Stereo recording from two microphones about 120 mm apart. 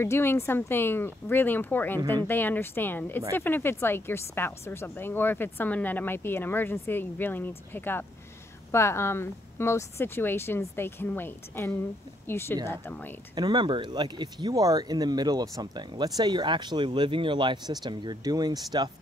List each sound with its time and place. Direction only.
0.0 s a woman's voice: 20° left (ahead or behind)
2.0 s speech: 35° right (ahead or behind)
2.2 s a woman's voice: 15° left (ahead or behind)
13.3 s speech: 40° right (ahead or behind)